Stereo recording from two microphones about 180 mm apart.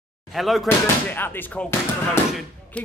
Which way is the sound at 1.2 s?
10° left (ahead or behind).